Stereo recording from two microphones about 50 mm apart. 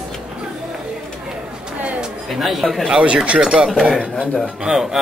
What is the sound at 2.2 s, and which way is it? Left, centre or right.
Speech, centre.